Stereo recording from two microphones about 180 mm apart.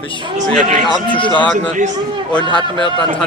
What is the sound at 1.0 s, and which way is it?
Speech, 25° left (ahead or behind).